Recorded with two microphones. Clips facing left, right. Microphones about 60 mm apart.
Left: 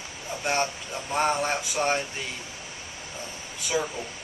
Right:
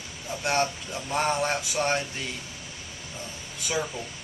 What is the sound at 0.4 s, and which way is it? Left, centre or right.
Speech, centre.